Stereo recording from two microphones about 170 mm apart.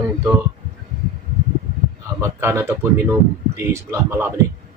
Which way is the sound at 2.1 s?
15° right (ahead or behind).